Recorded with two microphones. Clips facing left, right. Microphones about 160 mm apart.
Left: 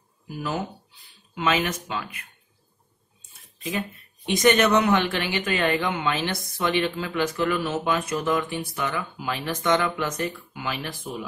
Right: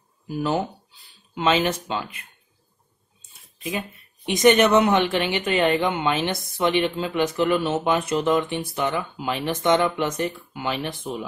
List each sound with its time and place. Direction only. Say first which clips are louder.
1.3 s speech: right 3 dB; 25° right (ahead or behind)
4.3 s speech: right 3 dB; 20° right (ahead or behind)